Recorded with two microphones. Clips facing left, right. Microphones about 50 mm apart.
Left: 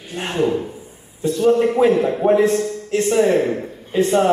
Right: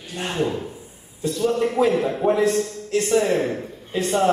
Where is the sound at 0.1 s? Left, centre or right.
Left.